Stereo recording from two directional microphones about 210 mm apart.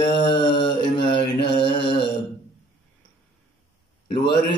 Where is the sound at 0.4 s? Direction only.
25° left (ahead or behind).